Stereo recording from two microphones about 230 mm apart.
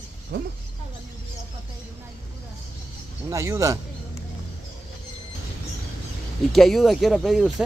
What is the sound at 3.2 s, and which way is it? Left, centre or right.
Speech, centre.